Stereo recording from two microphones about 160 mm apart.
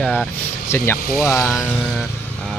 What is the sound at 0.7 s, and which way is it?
Speech, 15° left (ahead or behind).